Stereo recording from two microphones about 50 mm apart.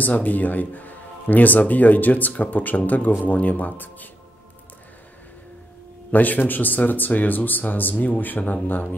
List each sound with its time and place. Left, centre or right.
0.0 s speech: left
6.1 s speech: left